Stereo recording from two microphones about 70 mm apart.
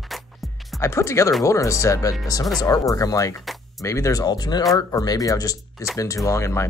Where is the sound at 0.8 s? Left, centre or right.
Left.